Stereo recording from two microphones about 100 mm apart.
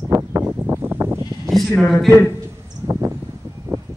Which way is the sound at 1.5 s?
Centre (ahead or behind).